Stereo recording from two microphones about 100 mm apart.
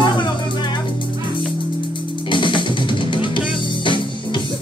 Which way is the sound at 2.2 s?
55° left (ahead or behind).